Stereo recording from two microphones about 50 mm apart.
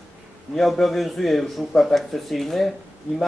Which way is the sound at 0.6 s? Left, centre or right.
Centre.